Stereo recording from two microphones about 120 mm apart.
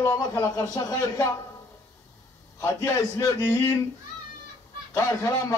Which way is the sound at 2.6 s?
30° left (ahead or behind).